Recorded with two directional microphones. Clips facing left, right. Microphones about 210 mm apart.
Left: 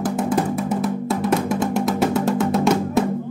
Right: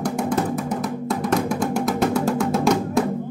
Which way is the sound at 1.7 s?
5° left (ahead or behind).